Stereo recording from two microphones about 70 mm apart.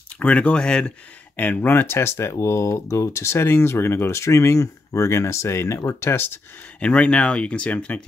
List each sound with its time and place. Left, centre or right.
0.2 s speech: left
6.8 s speech: centre